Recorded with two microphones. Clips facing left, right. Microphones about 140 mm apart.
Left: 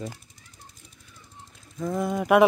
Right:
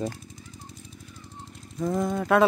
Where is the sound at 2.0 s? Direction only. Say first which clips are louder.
Left 3 dB; 10° left (ahead or behind).